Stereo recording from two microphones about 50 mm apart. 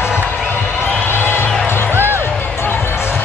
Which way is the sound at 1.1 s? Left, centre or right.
Left.